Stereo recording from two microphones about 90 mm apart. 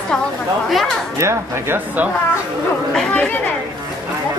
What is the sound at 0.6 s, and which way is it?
Speech, centre (ahead or behind).